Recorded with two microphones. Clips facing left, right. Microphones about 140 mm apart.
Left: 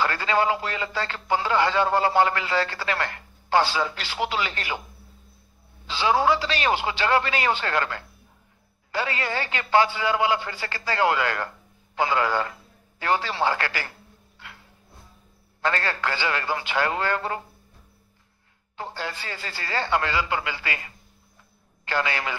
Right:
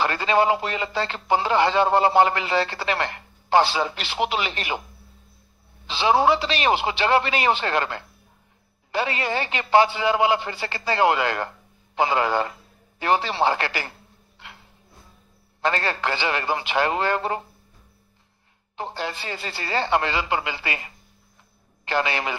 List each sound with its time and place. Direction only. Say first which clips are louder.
0.0 s speech: right 3 dB; 20° right (ahead or behind)
5.9 s speech: right 2 dB; 20° right (ahead or behind)
15.6 s speech: right 2 dB; 20° right (ahead or behind)
18.8 s speech: right 3 dB; 20° right (ahead or behind)